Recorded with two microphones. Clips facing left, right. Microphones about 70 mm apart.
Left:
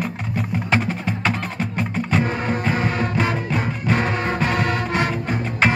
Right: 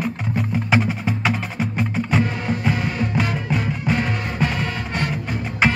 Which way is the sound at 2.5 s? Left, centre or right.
Left.